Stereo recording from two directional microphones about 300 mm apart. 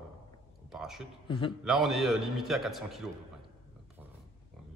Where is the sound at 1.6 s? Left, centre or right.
Centre.